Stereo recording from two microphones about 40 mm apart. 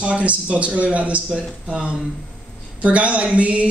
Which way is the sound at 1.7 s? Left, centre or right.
Right.